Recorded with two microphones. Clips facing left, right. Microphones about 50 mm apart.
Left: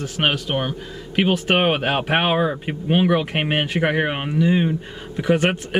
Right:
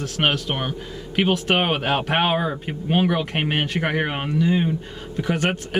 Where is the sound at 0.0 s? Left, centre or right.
Centre.